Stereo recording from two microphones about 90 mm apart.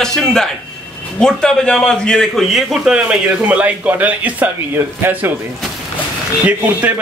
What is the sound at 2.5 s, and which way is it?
A man's voice, 5° right (ahead or behind).